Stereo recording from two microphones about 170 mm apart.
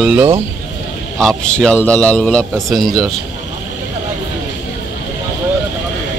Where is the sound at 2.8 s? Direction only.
20° right (ahead or behind).